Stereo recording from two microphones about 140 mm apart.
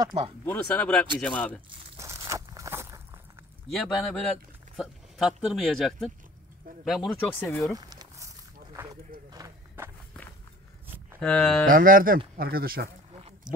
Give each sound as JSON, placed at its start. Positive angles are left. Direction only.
{"t": 0.0, "sound": "speech", "side_deg": -35}
{"t": 0.5, "sound": "speech", "side_deg": 10}
{"t": 2.0, "sound": "a sound", "side_deg": -20}
{"t": 3.7, "sound": "speech", "side_deg": 0}
{"t": 7.3, "sound": "speech", "side_deg": 20}
{"t": 7.7, "sound": "a sound", "side_deg": -25}
{"t": 9.3, "sound": "run", "side_deg": -25}
{"t": 11.1, "sound": "speech", "side_deg": 5}
{"t": 11.7, "sound": "speech", "side_deg": -80}